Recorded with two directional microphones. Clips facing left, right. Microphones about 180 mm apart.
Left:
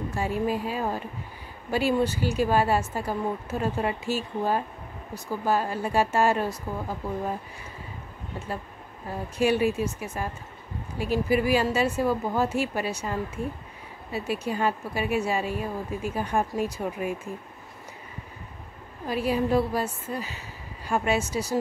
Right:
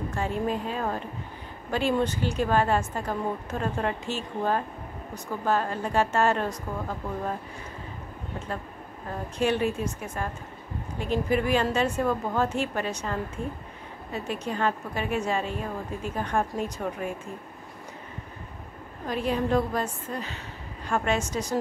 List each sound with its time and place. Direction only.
0.1 s a woman's voice: 10° left (ahead or behind)
9.4 s a woman's voice: 10° left (ahead or behind)
19.0 s a woman's voice: 5° left (ahead or behind)